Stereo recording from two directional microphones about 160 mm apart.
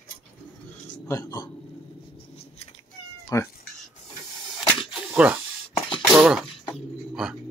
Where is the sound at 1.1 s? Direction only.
25° left (ahead or behind).